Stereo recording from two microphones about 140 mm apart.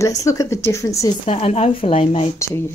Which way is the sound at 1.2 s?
45° left (ahead or behind).